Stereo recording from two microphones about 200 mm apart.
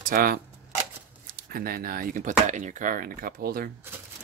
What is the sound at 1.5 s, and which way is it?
Speech, 50° right (ahead or behind).